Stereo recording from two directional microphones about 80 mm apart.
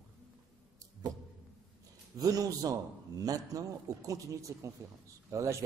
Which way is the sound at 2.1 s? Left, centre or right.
Right.